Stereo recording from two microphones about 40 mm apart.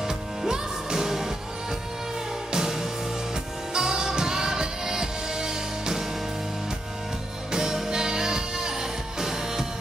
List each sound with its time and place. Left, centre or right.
0.0 s music: centre
2.5 s music: centre
7.5 s music: centre